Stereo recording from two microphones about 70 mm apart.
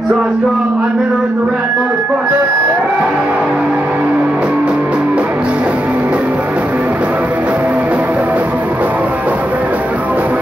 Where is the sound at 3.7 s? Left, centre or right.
Right.